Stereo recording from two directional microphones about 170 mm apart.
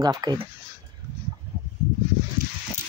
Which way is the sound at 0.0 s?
20° right (ahead or behind).